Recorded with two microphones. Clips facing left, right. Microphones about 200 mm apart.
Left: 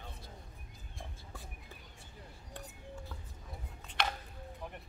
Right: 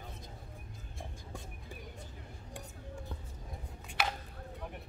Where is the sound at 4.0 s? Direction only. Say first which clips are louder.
Even; 5° right (ahead or behind).